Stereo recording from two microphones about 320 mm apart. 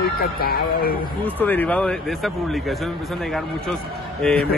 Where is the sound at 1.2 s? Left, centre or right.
Centre.